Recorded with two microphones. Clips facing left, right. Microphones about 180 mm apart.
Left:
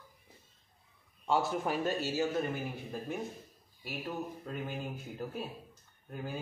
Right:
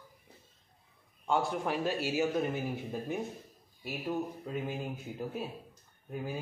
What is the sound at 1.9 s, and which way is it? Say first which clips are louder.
Speech: right 1 dB; 10° right (ahead or behind).